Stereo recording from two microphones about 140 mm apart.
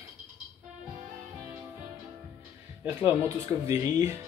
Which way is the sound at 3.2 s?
25° right (ahead or behind).